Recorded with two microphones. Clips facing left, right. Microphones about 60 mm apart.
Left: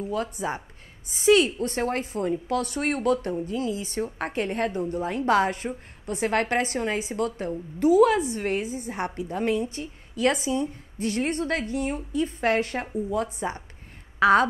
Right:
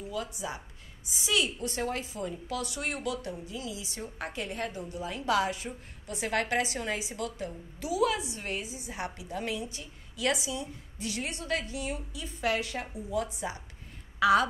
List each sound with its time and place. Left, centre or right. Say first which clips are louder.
0.1 s a woman's voice: left 6 dB; left